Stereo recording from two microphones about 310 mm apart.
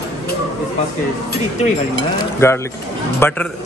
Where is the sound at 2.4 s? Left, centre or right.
Centre.